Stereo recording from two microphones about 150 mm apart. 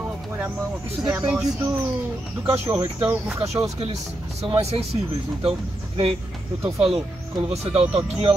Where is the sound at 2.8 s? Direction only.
15° right (ahead or behind).